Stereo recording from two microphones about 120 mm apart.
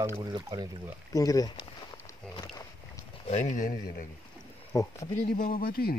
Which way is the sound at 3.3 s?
80° left.